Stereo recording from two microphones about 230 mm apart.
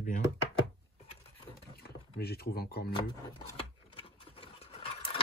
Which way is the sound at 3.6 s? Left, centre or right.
Left.